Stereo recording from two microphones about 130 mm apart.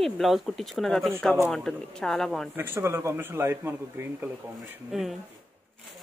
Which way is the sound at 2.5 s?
15° right (ahead or behind).